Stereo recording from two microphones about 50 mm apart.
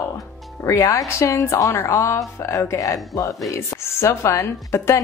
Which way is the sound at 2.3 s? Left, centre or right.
Left.